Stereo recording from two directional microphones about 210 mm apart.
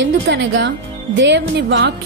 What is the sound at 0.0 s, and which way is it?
Speech, 60° right (ahead or behind).